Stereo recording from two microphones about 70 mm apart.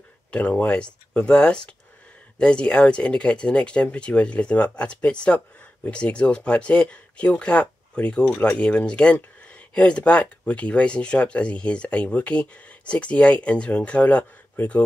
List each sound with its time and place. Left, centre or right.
0.3 s speech: left